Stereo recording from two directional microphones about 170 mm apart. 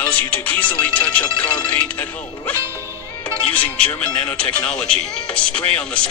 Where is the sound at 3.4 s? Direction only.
10° left (ahead or behind).